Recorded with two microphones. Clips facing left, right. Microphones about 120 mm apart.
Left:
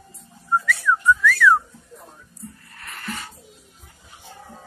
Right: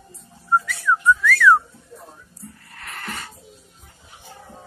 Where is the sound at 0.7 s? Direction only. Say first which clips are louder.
Left 2 dB; 35° right (ahead or behind).